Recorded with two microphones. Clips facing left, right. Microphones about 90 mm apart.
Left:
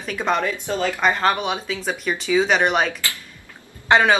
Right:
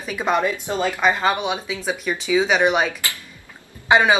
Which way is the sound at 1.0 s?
5° right (ahead or behind).